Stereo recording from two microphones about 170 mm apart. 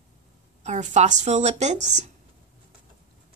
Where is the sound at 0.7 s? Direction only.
45° right (ahead or behind).